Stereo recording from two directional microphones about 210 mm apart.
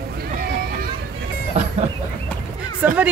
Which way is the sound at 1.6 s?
30° right (ahead or behind).